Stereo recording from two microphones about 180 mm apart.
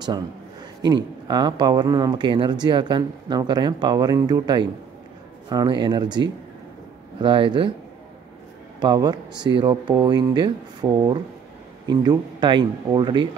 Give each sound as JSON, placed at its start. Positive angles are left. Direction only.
{"t": 0.8, "sound": "speech", "side_deg": -25}
{"t": 8.7, "sound": "a man's voice", "side_deg": -20}